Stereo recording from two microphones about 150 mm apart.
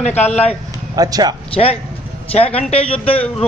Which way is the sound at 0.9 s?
25° right (ahead or behind).